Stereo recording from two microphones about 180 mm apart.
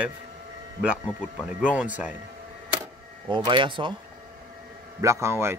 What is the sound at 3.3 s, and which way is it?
Speech, 25° right (ahead or behind).